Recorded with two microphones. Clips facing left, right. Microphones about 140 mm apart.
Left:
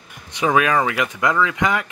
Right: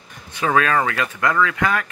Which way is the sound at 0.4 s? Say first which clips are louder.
Left 1 dB; 15° left (ahead or behind).